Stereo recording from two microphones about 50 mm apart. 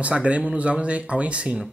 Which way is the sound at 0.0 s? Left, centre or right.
Right.